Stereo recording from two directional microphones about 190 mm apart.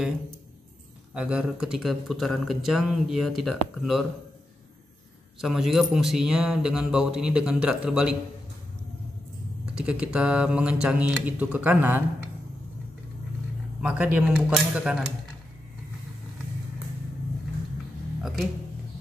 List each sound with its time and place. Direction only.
1.1 s speech: 5° right (ahead or behind)
5.4 s speech: centre (ahead or behind)
9.8 s speech: 5° right (ahead or behind)
13.7 s speech: 5° right (ahead or behind)
18.2 s speech: centre (ahead or behind)